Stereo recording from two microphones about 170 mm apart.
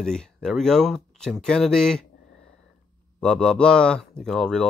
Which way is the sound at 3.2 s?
5° left (ahead or behind).